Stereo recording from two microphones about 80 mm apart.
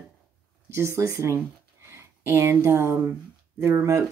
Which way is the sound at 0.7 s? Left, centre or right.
Right.